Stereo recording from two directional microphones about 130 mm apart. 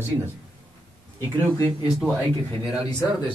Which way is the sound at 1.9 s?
Centre (ahead or behind).